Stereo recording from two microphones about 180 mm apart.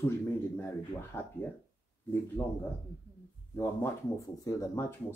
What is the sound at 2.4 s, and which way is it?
Speech, 25° left (ahead or behind).